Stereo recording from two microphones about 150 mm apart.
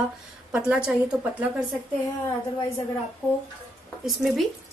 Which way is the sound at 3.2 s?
20° left (ahead or behind).